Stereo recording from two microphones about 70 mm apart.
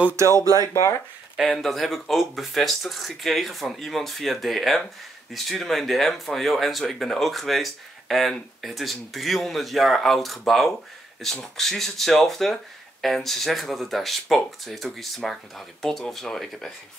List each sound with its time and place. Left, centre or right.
0.1 s speech: right
0.6 s speech: left
1.5 s speech: centre